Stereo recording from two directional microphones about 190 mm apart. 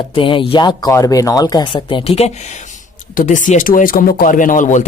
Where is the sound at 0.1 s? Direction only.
25° left (ahead or behind).